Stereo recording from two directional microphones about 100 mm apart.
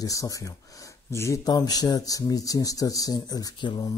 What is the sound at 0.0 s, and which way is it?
Speech, 35° left (ahead or behind).